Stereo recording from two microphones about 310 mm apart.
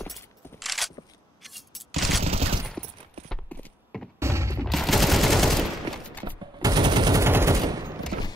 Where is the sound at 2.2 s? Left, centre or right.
Centre.